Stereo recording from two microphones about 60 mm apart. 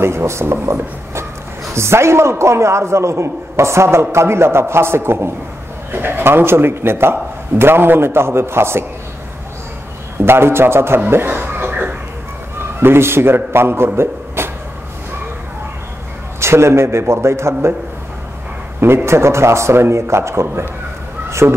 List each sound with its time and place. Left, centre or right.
0.0 s a sound: right
1.8 s a man's voice: right
10.2 s a man's voice: right
11.2 s chuckle: right
12.8 s a man's voice: right
16.3 s a man's voice: right
19.0 s a man's voice: right